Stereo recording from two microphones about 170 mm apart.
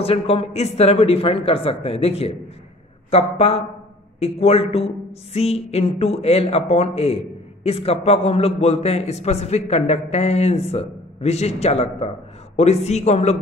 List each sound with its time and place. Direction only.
0.0 s a woman's voice: 35° left (ahead or behind)